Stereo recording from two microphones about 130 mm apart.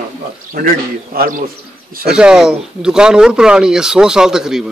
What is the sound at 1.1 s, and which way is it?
Speech, 90° right.